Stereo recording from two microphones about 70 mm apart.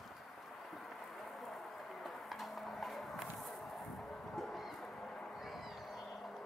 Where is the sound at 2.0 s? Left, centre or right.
Centre.